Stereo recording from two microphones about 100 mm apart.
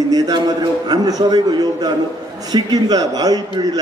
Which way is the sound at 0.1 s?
45° right (ahead or behind).